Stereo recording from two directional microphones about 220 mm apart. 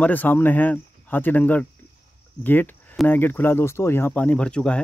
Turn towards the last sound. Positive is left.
turn(degrees=5)  # may be behind; listen again after turning